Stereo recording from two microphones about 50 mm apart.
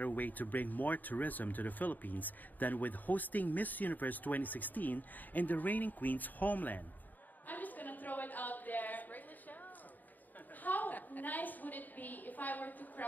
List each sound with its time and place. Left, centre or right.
0.0 s speech: left
7.4 s a sound: left
10.6 s a woman's voice: left